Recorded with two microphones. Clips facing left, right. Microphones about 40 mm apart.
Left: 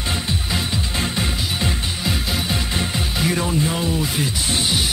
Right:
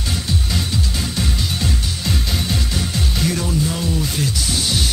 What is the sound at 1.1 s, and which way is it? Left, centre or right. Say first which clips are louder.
Music: even; left.